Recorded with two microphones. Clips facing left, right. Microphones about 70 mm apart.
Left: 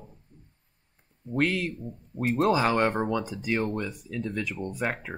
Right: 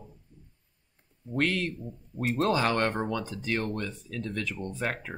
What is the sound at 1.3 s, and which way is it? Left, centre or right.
A man's voice, centre.